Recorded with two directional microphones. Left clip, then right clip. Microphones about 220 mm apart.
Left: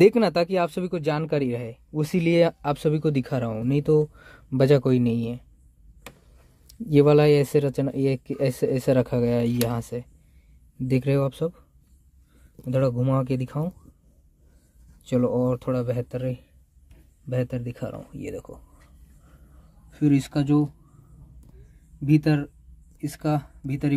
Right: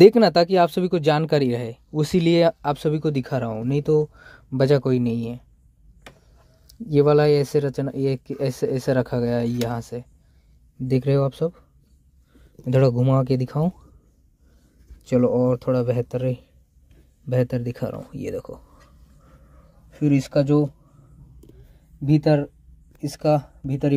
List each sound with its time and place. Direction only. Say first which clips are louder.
0.0 s speech: right 5 dB; 10° right (ahead or behind)
6.9 s speech: right 1 dB; 5° left (ahead or behind)
12.6 s speech: right 4 dB; 25° right (ahead or behind)
15.0 s speech: right 4 dB; 5° right (ahead or behind)
15.7 s speech: right 5 dB; 15° right (ahead or behind)
19.9 s speech: right 1 dB; 5° right (ahead or behind)
22.1 s speech: right 3 dB; 10° right (ahead or behind)